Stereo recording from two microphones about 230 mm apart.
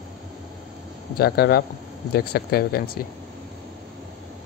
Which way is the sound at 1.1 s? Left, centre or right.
Left.